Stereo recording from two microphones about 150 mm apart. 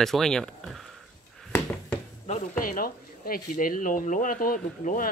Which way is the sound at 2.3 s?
70° left (ahead or behind).